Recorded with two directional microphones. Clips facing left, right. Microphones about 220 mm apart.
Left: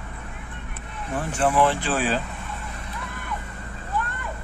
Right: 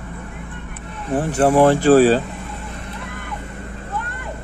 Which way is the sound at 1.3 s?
40° right (ahead or behind).